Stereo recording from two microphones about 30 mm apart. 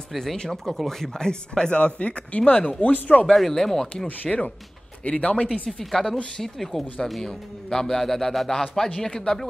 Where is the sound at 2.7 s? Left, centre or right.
Left.